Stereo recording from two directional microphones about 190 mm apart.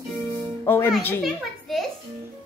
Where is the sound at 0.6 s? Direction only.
15° left (ahead or behind).